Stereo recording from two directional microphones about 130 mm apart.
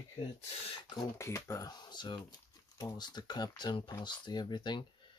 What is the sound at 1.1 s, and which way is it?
Speech, 20° left (ahead or behind).